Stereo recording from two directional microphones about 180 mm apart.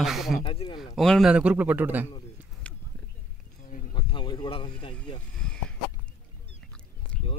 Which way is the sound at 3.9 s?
25° left (ahead or behind).